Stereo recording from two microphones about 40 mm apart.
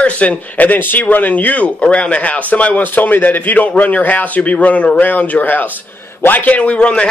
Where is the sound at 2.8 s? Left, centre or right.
Left.